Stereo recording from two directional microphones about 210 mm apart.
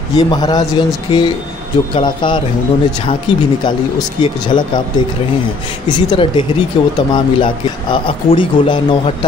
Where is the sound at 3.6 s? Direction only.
20° left (ahead or behind).